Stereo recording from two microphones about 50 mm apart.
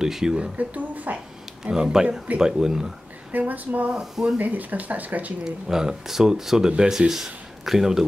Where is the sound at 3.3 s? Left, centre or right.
Right.